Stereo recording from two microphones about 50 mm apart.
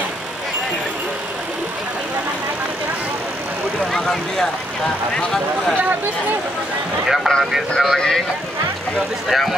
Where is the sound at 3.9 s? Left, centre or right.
Centre.